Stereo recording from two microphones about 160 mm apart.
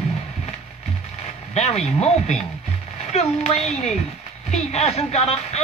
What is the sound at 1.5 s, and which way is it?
Speech, 40° left (ahead or behind).